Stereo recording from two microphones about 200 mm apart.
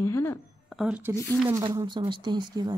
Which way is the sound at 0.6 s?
Centre (ahead or behind).